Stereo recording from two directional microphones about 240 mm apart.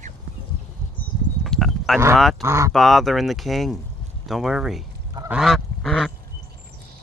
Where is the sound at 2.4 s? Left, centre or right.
Centre.